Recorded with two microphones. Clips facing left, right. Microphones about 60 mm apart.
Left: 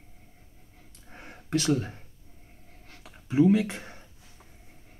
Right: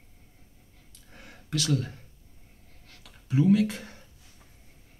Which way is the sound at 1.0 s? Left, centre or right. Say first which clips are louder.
Left 3 dB; left.